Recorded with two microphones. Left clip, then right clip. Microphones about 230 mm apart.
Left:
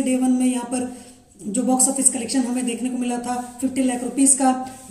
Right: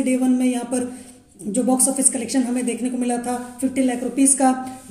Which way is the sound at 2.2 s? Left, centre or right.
Centre.